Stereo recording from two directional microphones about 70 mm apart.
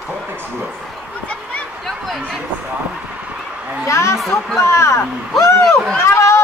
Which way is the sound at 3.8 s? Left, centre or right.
Left.